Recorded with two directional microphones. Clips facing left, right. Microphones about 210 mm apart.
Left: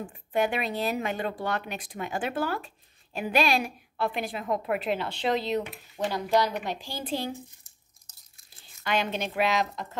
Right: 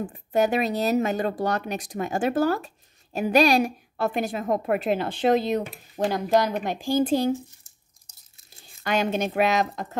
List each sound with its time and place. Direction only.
0.0 s speech: 40° right (ahead or behind)
8.8 s speech: 45° right (ahead or behind)